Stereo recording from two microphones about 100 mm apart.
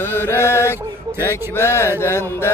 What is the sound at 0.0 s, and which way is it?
Mantra, 25° left (ahead or behind).